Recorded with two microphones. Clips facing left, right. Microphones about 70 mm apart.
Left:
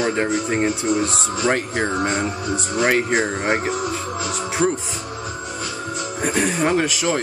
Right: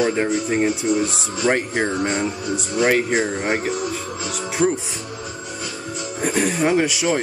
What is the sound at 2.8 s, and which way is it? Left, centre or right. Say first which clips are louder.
Speech: right 1 dB; centre.